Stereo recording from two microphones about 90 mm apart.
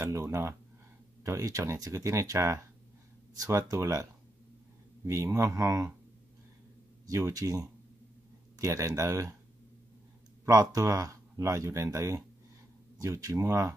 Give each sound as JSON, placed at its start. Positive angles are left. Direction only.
{"t": 0.0, "sound": "speech", "side_deg": -35}
{"t": 7.1, "sound": "speech", "side_deg": -40}
{"t": 10.4, "sound": "speech", "side_deg": -40}